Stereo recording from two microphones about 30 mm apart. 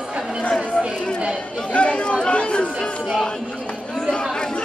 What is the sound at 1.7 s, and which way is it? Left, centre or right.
Chatter, left.